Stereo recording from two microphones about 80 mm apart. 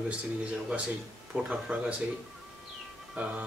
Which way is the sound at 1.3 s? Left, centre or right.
Centre.